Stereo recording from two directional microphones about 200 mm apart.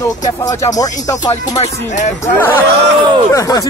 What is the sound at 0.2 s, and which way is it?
Speech, 15° left (ahead or behind).